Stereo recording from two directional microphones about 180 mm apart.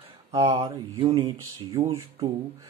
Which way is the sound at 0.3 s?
20° right (ahead or behind).